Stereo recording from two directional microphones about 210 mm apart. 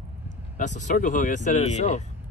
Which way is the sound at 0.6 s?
35° left (ahead or behind).